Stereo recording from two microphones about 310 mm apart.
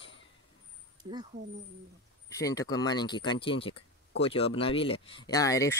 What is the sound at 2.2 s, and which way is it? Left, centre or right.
Speech, centre.